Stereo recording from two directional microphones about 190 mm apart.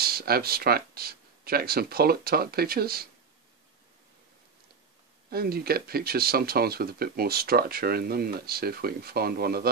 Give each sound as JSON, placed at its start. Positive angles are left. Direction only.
{"t": 0.0, "sound": "speech", "side_deg": -55}
{"t": 5.3, "sound": "speech", "side_deg": -55}